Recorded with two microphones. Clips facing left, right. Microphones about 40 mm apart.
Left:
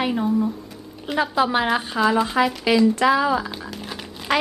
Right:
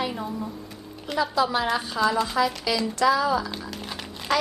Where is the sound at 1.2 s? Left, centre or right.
Left.